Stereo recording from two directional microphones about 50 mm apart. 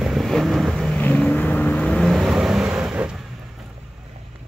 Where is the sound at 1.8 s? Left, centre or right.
Centre.